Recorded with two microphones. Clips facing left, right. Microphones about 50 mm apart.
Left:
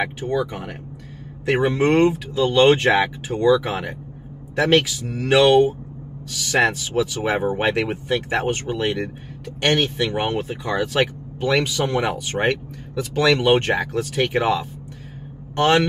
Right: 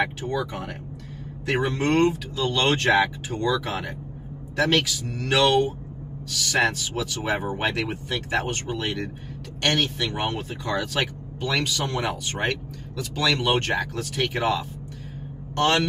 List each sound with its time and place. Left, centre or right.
0.0 s speech: centre